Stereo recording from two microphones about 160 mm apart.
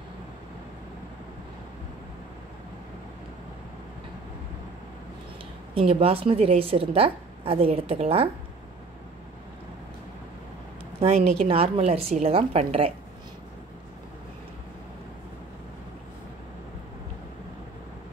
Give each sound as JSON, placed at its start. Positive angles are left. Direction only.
{"t": 5.8, "sound": "a woman's voice", "side_deg": -35}
{"t": 11.0, "sound": "a woman's voice", "side_deg": -40}